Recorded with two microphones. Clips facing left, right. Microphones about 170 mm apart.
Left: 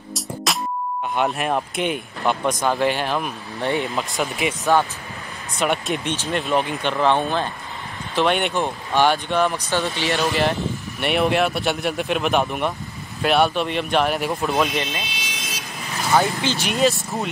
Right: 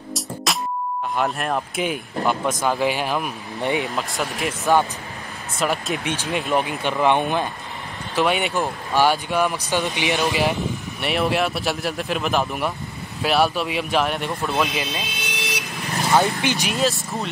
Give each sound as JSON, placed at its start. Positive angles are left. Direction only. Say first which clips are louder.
{"t": 0.5, "sound": "music", "louder": "even", "side_deg": 0}
{"t": 1.1, "sound": "speech", "louder": "left 2 dB", "side_deg": 0}
{"t": 8.2, "sound": "speech", "louder": "left 1 dB", "side_deg": -5}
{"t": 11.0, "sound": "speech", "louder": "left 2 dB", "side_deg": 0}
{"t": 15.2, "sound": "vehicle", "louder": "right 5 dB", "side_deg": -65}
{"t": 16.2, "sound": "speech", "louder": "even", "side_deg": -15}
{"t": 16.6, "sound": "speech", "louder": "left 3 dB", "side_deg": 0}